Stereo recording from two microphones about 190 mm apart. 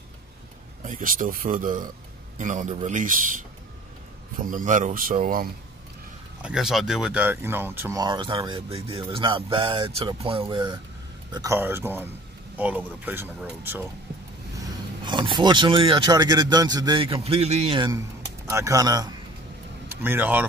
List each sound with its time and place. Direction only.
0.8 s a man's voice: 45° right (ahead or behind)
6.4 s speech: 5° right (ahead or behind)
8.0 s speech: 25° right (ahead or behind)
11.3 s speech: 15° right (ahead or behind)
15.0 s speech: 25° right (ahead or behind)
18.5 s speech: 15° right (ahead or behind)
19.9 s speech: 10° right (ahead or behind)